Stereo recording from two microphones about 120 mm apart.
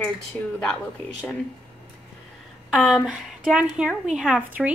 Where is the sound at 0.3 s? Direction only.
10° left (ahead or behind).